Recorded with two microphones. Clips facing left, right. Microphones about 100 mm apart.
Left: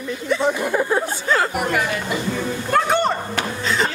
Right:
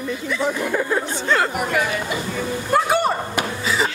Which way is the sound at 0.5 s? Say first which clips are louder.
Left 1 dB; 15° left (ahead or behind).